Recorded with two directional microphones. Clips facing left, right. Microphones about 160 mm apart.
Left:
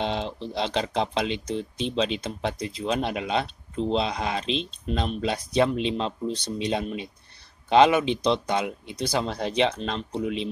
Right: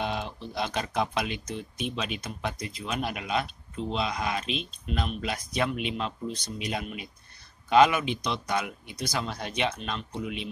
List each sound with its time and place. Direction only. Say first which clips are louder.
0.0 s speech: left 4 dB; 25° left (ahead or behind)